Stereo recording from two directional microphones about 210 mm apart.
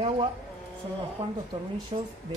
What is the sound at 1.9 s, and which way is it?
Speech, 25° right (ahead or behind).